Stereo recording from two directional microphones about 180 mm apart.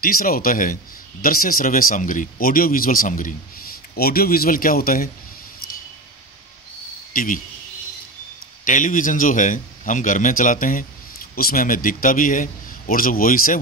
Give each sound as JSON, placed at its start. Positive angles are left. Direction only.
{"t": 0.0, "sound": "speech", "side_deg": 55}
{"t": 8.6, "sound": "speech", "side_deg": 45}